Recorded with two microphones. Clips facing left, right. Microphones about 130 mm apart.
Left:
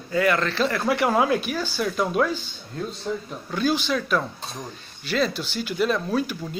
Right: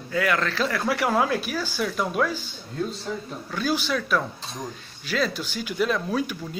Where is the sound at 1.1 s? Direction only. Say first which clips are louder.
Left 2 dB; 10° left (ahead or behind).